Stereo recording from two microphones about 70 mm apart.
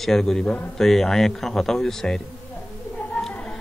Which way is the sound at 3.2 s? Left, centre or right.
Centre.